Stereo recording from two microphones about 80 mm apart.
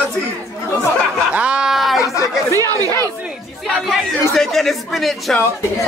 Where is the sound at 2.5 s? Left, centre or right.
Right.